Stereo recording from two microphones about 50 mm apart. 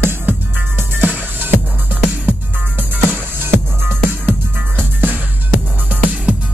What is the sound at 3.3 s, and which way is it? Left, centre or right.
Music, right.